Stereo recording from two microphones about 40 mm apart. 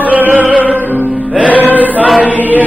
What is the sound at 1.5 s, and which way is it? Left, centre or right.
Choir, right.